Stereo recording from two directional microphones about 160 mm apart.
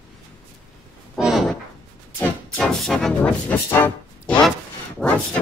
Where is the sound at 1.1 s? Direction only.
Centre (ahead or behind).